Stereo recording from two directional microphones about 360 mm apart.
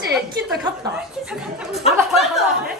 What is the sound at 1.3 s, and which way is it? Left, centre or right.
Speech, centre.